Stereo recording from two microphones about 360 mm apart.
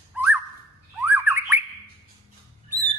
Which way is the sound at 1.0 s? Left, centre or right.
Centre.